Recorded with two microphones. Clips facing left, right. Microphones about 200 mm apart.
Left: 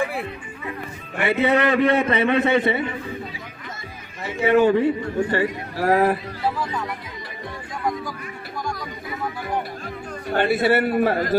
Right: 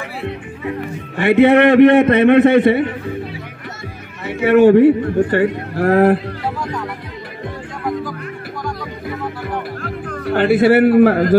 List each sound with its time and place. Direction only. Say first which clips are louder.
1.2 s a man's voice: right 9 dB; 65° right (ahead or behind)
4.3 s a man's voice: right 7 dB; 60° right (ahead or behind)
6.6 s speech: right 3 dB; 5° left (ahead or behind)
9.8 s a man's voice: right 6 dB; 65° right (ahead or behind)